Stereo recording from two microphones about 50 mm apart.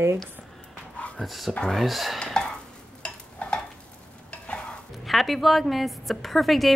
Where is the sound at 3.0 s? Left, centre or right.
Left.